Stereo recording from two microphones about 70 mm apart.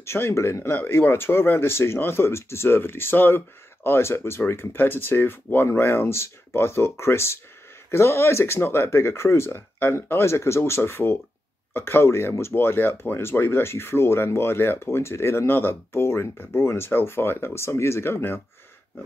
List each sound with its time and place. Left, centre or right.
0.0 s speech: left